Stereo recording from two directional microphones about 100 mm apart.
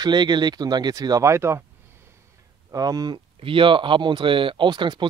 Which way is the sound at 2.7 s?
40° right (ahead or behind).